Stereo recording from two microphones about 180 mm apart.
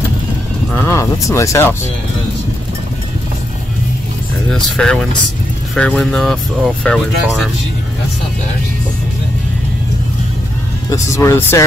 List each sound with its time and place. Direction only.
0.7 s speech: 15° left (ahead or behind)
4.5 s speech: 5° left (ahead or behind)
10.9 s speech: 15° left (ahead or behind)